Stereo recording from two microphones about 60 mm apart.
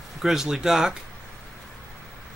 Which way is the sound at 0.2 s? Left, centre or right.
Centre.